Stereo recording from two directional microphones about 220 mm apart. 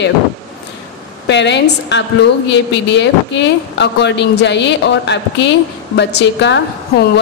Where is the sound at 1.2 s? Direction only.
55° left (ahead or behind).